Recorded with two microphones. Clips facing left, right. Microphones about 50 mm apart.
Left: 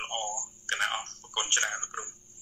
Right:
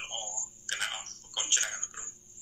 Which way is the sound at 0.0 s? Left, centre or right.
Left.